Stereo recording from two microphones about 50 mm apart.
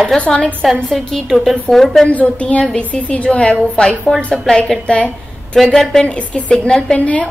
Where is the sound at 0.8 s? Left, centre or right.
Centre.